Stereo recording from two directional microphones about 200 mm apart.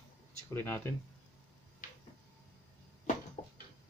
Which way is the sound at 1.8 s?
40° left (ahead or behind).